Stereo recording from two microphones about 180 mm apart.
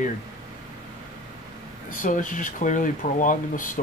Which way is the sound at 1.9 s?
45° left (ahead or behind).